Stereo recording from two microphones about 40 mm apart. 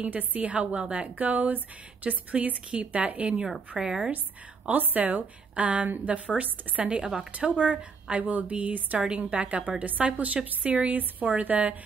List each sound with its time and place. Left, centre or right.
0.0 s a woman's voice: right
1.1 s a woman's voice: right
3.7 s a woman's voice: centre
4.6 s a woman's voice: right
11.4 s a woman's voice: right